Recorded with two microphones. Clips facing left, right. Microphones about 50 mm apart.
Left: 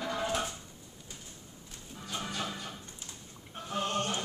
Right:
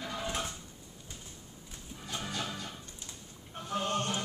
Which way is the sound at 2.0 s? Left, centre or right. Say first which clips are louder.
Left 1 dB; centre.